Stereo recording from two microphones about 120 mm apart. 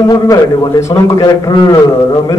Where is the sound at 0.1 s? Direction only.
25° left (ahead or behind).